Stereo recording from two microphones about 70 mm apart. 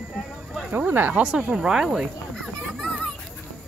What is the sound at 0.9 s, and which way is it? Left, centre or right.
Speech, right.